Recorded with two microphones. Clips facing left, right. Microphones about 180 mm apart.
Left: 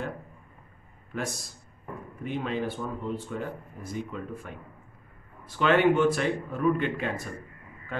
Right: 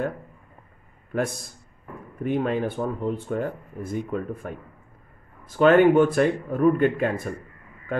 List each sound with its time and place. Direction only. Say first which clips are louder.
1.1 s a man's voice: right 7 dB; 55° right (ahead or behind)